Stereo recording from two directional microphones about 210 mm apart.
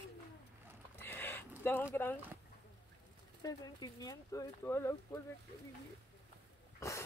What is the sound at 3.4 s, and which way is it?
Speech, 15° left (ahead or behind).